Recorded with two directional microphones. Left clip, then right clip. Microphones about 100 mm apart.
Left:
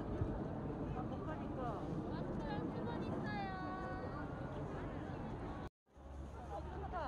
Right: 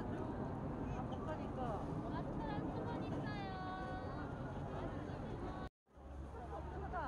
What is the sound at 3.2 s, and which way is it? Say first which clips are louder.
Vehicle: left 3 dB; 10° right (ahead or behind).